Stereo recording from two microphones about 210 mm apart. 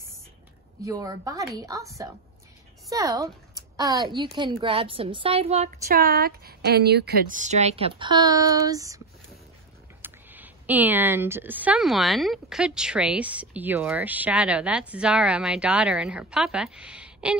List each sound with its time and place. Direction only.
0.8 s a woman's voice: 15° right (ahead or behind)
2.9 s a woman's voice: 15° right (ahead or behind)
5.9 s speech: 45° right (ahead or behind); by 9.0 s 15° right (ahead or behind)
10.0 s speech: 10° right (ahead or behind)